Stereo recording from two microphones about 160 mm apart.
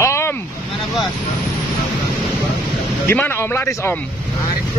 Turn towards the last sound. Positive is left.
turn(degrees=15)  # may be behind; listen again after turning